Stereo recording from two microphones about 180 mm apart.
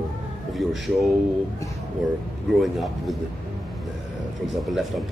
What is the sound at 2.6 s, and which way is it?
Speech, centre (ahead or behind).